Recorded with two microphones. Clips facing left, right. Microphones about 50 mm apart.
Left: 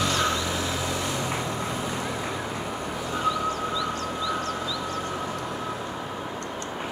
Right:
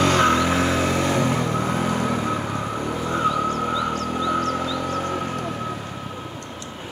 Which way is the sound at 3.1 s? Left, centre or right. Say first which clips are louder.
Right 4 dB; right.